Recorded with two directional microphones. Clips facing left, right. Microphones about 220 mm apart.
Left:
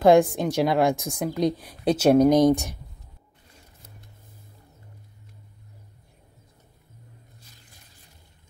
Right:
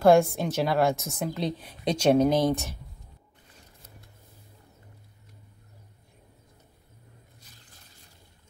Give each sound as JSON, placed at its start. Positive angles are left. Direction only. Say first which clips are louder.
{"t": 0.0, "sound": "a woman's voice", "louder": "left 2 dB", "side_deg": 15}